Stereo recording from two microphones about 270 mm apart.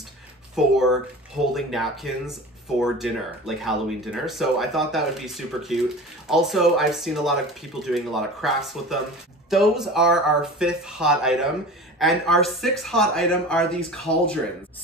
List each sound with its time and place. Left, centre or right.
0.6 s speech: centre